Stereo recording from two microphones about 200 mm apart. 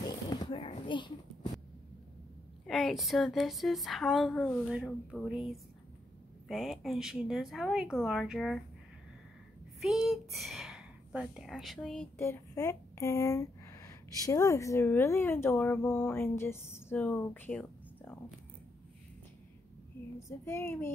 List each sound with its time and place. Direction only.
0.0 s a sound: 20° left (ahead or behind)
2.6 s a woman's voice: centre (ahead or behind)
9.8 s a woman's voice: centre (ahead or behind)
12.2 s speech: 15° left (ahead or behind)
20.2 s female singing: 15° left (ahead or behind)